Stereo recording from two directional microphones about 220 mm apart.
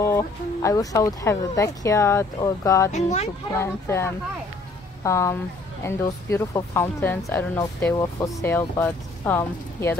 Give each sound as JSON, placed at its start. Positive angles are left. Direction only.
{"t": 0.0, "sound": "speech", "side_deg": 15}
{"t": 2.9, "sound": "speech", "side_deg": 30}
{"t": 3.5, "sound": "speech", "side_deg": 10}